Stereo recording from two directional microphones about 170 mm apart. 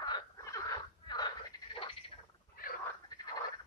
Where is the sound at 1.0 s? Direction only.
25° left (ahead or behind).